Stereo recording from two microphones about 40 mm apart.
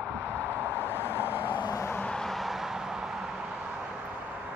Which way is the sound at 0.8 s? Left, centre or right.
Left.